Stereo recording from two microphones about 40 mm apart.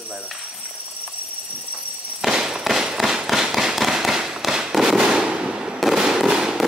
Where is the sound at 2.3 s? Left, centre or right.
Centre.